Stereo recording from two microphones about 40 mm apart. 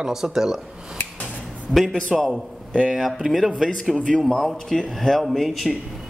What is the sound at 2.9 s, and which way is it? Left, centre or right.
Speech, centre.